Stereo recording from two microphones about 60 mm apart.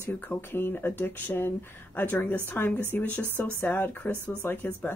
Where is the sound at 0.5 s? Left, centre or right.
Left.